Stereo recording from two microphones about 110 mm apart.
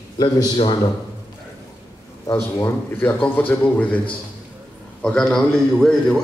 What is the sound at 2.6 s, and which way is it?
A man's voice, 25° left (ahead or behind).